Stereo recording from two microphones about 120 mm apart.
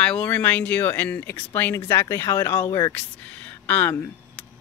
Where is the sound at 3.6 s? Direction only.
15° left (ahead or behind).